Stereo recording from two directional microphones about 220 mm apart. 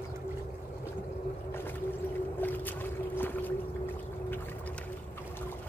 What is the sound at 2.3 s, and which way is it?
Boat, 10° left (ahead or behind).